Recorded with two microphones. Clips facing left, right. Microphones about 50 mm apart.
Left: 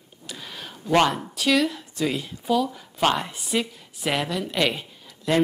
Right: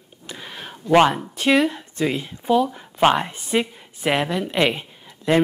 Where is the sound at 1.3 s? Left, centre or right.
Right.